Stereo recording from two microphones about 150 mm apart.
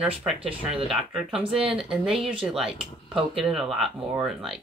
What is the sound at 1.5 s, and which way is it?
Speech, 35° right (ahead or behind).